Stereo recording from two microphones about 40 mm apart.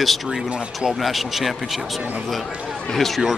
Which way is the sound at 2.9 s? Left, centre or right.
Centre.